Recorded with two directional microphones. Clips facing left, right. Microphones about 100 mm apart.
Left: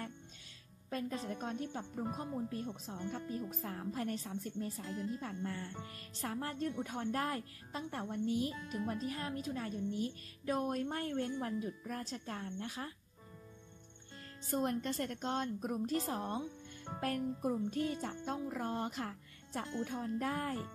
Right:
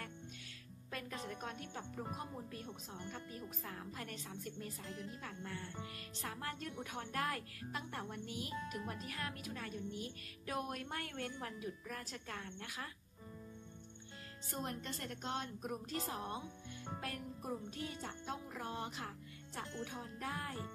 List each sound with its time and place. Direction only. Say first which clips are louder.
0.8 s a woman's voice: left 6 dB; 30° left (ahead or behind)
14.5 s a woman's voice: left 8 dB; 45° left (ahead or behind)
17.6 s speech: left 8 dB; 40° left (ahead or behind)